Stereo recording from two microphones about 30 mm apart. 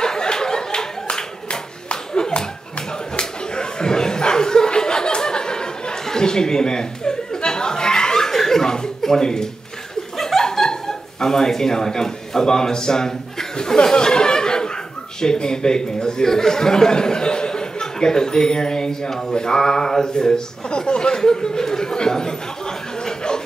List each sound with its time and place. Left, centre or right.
0.0 s a sound: left
3.2 s chuckle: left
13.9 s laughter: left
15.1 s speech: left